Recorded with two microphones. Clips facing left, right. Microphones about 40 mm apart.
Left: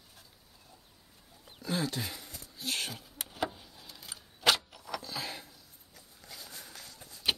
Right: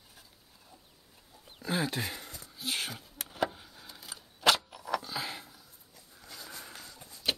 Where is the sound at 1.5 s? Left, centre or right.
Centre.